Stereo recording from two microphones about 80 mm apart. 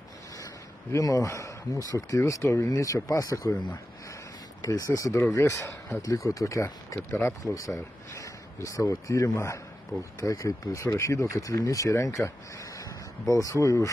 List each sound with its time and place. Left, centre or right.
0.9 s speech: left
4.6 s a man's voice: left
7.0 s a man's voice: left